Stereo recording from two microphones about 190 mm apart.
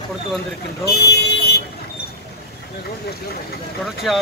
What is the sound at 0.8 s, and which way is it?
Speech, 60° left (ahead or behind).